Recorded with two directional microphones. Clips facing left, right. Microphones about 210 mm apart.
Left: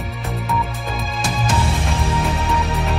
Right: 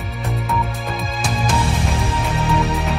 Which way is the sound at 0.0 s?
Centre (ahead or behind).